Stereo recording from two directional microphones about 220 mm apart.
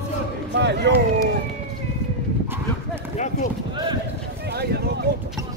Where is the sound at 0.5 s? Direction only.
50° right (ahead or behind).